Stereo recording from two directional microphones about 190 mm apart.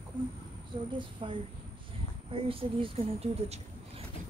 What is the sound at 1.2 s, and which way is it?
Speech, 30° right (ahead or behind).